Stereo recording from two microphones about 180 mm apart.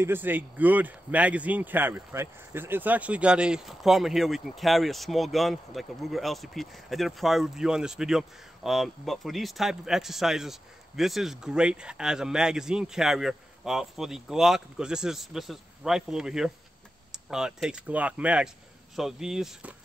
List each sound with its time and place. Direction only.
0.0 s speech: 10° right (ahead or behind)